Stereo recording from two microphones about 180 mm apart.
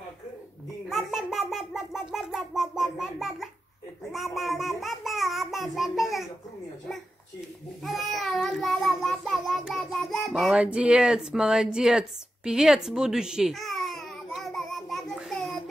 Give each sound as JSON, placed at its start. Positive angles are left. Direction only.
{"t": 0.8, "sound": "a child's voice", "side_deg": 0}
{"t": 4.1, "sound": "child singing", "side_deg": 0}
{"t": 7.8, "sound": "child singing", "side_deg": 0}